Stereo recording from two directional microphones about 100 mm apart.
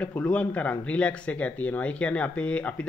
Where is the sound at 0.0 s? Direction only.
15° left (ahead or behind).